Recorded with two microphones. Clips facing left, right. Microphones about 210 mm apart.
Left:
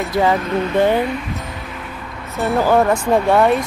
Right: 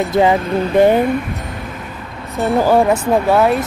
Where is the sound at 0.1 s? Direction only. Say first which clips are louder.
Right 3 dB; 15° right (ahead or behind).